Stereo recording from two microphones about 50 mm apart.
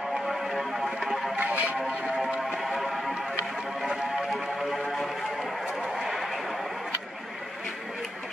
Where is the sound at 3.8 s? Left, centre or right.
Centre.